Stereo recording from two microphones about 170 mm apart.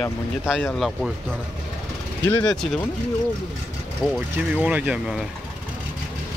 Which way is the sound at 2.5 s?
5° left (ahead or behind).